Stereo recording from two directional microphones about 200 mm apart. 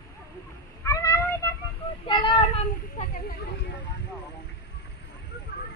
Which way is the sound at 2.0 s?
25° left (ahead or behind).